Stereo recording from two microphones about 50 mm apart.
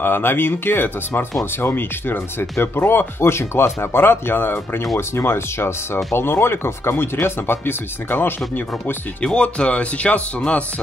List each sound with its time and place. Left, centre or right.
0.0 s speech: left
3.3 s speech: left
9.2 s speech: centre